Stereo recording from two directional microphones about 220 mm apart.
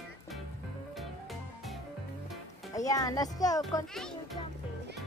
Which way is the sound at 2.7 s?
15° left (ahead or behind).